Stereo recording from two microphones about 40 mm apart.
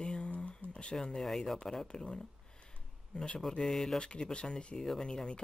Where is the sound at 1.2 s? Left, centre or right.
Centre.